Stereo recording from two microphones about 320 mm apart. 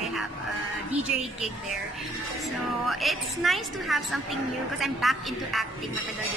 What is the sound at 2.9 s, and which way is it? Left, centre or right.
A woman's voice, centre.